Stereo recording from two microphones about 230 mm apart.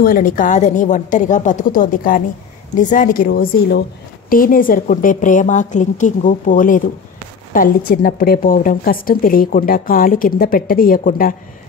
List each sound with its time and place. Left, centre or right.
0.0 s a woman's voice: left